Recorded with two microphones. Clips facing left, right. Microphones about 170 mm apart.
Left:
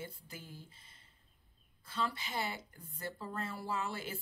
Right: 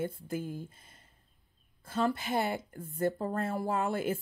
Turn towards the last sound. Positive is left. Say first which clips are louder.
# right 9 dB
turn(degrees=-50)  # may be behind; listen again after turning